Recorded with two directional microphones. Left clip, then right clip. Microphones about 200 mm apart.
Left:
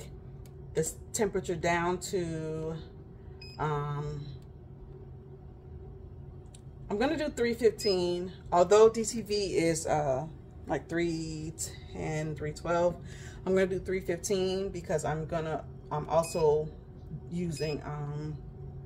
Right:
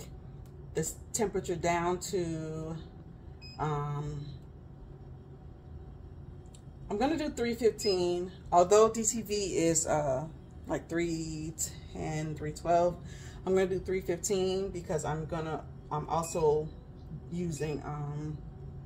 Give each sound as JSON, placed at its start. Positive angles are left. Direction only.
{"t": 0.7, "sound": "speech", "side_deg": 0}
{"t": 6.9, "sound": "speech", "side_deg": 5}